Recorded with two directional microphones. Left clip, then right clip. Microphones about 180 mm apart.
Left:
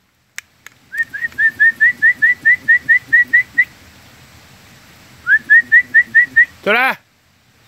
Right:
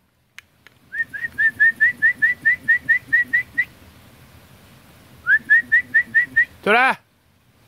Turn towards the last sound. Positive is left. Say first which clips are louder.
# left 2 dB
turn(degrees=0)  # may be behind; listen again after turning